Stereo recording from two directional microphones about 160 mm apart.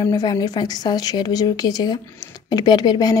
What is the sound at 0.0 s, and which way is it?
A woman's voice, 25° left (ahead or behind).